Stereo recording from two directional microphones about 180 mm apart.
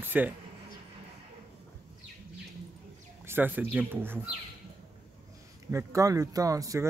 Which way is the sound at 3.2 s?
10° right (ahead or behind).